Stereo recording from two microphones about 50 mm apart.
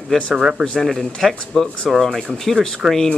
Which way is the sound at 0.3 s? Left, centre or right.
Centre.